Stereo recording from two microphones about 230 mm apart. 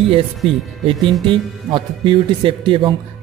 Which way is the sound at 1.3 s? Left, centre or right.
Right.